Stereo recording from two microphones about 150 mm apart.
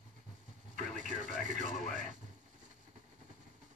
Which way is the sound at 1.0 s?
60° right (ahead or behind).